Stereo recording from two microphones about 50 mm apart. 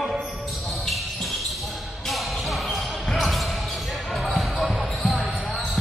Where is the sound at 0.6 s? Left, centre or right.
Centre.